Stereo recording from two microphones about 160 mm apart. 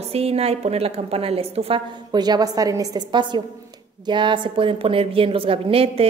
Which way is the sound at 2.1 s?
25° right (ahead or behind).